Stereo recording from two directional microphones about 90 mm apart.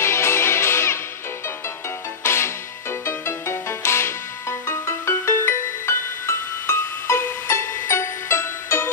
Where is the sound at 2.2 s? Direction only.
30° left (ahead or behind).